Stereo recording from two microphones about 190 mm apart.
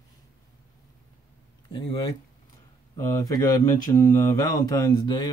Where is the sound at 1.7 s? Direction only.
25° left (ahead or behind).